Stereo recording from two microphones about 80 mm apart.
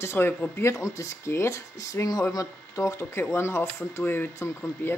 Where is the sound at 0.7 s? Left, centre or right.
Left.